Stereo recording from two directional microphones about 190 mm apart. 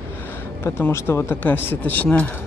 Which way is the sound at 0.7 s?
15° left (ahead or behind).